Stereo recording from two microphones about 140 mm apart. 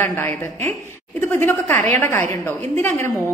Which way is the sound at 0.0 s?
15° left (ahead or behind).